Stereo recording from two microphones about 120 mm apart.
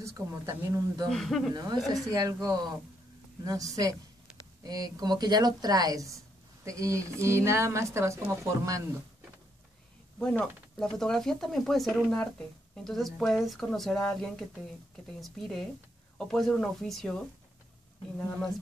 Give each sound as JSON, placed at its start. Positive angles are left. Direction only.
{"t": 0.0, "sound": "a woman's voice", "side_deg": -30}
{"t": 1.0, "sound": "speech", "side_deg": 0}
{"t": 1.5, "sound": "a woman's voice", "side_deg": -35}
{"t": 10.4, "sound": "speech", "side_deg": 5}